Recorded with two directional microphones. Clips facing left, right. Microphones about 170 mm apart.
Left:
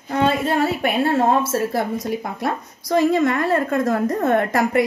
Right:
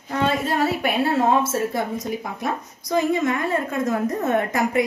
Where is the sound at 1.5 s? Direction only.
65° left (ahead or behind).